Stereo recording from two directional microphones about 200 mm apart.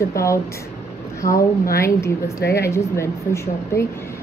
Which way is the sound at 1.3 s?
45° left (ahead or behind).